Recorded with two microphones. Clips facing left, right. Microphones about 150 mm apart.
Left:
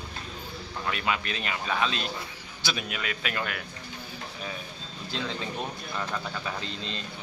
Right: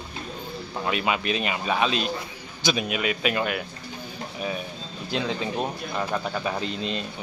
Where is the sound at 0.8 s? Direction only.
20° right (ahead or behind).